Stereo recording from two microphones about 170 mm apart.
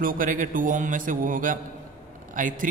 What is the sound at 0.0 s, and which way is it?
A man's voice, 55° right (ahead or behind).